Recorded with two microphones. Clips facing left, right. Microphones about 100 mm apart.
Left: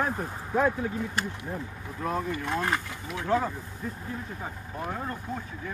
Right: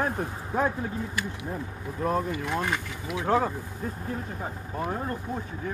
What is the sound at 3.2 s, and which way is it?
Speech, 45° right (ahead or behind).